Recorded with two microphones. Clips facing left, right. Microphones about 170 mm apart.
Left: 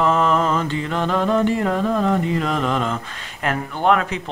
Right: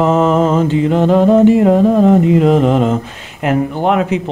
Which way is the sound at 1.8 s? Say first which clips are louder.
Right 10 dB; 45° right (ahead or behind).